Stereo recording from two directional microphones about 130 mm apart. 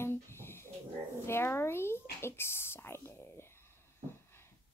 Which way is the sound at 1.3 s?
20° left (ahead or behind).